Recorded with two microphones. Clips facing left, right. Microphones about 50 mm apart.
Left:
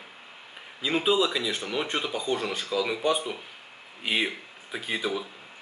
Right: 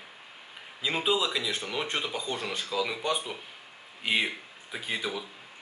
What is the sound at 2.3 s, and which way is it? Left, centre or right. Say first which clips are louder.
Speech: left 6 dB; centre.